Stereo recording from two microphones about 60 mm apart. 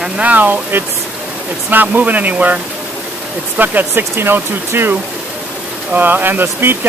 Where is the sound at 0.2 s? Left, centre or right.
Right.